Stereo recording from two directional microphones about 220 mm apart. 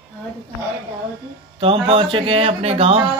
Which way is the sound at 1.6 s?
25° right (ahead or behind).